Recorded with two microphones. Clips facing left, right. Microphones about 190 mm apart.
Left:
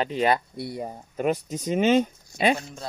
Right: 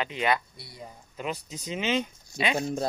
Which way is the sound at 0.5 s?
60° left (ahead or behind).